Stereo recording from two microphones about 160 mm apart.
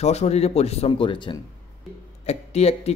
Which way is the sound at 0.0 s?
40° left (ahead or behind).